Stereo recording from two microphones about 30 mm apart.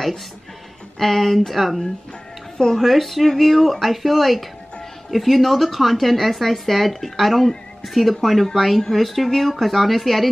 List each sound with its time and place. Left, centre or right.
0.9 s speech: centre
2.5 s speech: centre
2.8 s speech: centre